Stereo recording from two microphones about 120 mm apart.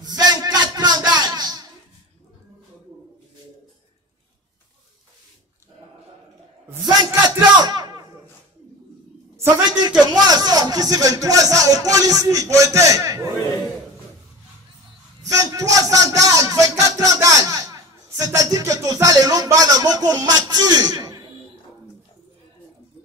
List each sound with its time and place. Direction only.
0.0 s a sound: 35° right (ahead or behind)
7.2 s music: 35° right (ahead or behind)
9.7 s a man's voice: 35° right (ahead or behind)
15.2 s music: 30° right (ahead or behind)